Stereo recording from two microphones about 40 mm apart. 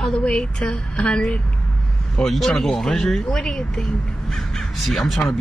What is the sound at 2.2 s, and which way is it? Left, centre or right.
Speech, centre.